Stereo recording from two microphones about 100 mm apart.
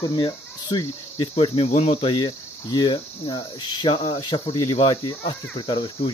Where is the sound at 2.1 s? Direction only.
45° left (ahead or behind).